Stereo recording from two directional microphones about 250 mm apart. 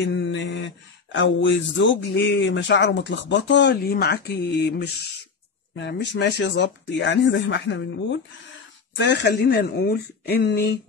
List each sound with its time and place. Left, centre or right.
0.0 s speech: left